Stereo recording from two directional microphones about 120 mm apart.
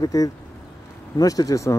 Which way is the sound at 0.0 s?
30° left (ahead or behind).